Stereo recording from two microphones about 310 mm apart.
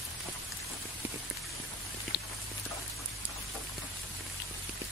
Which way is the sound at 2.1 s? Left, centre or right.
Left.